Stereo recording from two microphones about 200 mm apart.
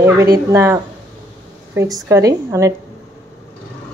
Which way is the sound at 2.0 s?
15° right (ahead or behind).